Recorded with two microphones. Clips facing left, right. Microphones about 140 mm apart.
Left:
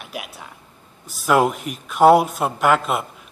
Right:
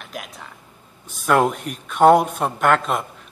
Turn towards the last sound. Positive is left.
turn(degrees=5)  # may be behind; listen again after turning